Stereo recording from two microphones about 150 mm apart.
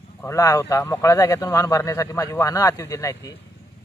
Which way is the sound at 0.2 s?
20° left (ahead or behind).